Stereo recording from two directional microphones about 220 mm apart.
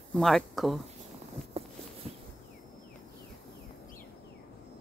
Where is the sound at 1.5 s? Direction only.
25° right (ahead or behind).